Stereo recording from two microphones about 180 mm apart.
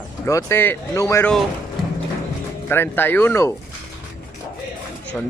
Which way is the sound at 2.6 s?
10° left (ahead or behind).